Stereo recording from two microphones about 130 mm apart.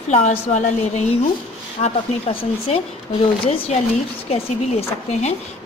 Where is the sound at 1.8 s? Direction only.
50° left (ahead or behind).